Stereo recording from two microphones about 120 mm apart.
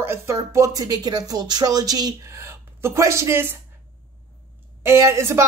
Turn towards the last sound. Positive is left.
turn(degrees=-25)  # may be behind; listen again after turning